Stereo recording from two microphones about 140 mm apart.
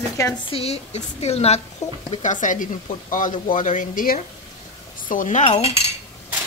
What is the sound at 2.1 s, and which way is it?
Speech, 65° left (ahead or behind).